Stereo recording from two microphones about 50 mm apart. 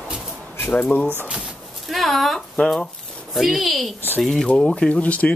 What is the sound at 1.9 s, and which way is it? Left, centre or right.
Speech, centre.